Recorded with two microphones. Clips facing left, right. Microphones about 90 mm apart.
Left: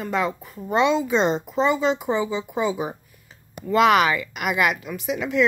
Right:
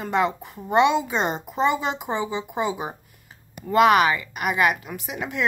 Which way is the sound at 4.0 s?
25° right (ahead or behind).